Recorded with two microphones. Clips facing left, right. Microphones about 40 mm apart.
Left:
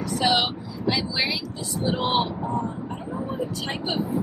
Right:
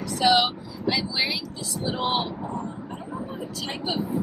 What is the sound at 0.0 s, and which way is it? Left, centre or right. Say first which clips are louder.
Speech: right 2 dB; centre.